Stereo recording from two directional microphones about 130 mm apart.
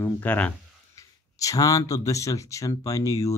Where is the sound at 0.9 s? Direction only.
25° left (ahead or behind).